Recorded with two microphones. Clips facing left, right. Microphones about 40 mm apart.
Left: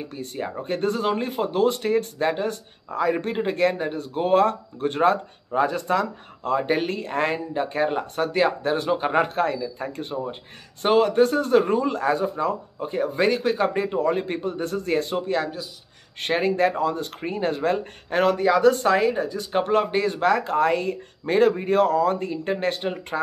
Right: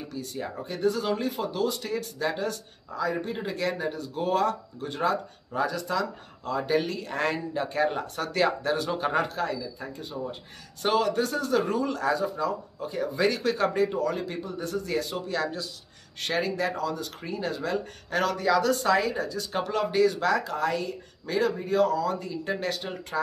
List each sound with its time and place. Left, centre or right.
0.1 s speech: left
2.9 s speech: left
3.3 s speech: left
10.8 s speech: left
13.4 s speech: left